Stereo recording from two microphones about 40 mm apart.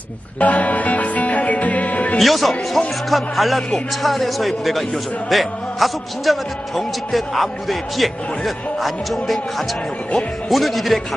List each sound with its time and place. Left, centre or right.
0.4 s speech: left
2.1 s a man's voice: centre
10.5 s a man's voice: centre